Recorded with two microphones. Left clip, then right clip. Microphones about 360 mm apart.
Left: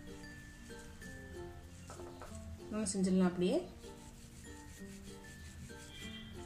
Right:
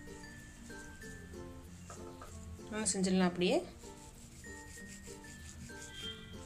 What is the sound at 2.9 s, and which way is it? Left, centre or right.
Speech, right.